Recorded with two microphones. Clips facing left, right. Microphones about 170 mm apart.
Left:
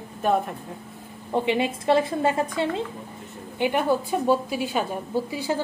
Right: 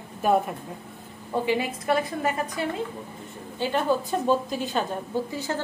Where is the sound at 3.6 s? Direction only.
15° left (ahead or behind).